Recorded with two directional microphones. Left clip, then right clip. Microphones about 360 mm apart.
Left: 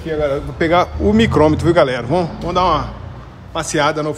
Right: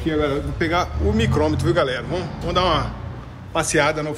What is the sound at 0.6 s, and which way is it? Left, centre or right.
A man's voice, left.